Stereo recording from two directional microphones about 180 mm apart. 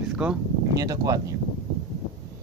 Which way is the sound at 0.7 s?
20° right (ahead or behind).